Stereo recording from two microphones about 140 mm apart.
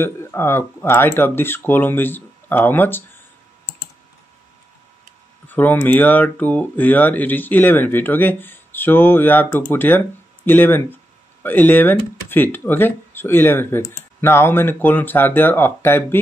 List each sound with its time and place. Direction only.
0.0 s speech: 15° left (ahead or behind)
5.5 s speech: 15° left (ahead or behind)